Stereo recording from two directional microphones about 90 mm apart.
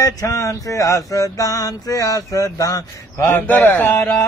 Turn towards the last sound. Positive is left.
turn(degrees=25)  # may be behind; listen again after turning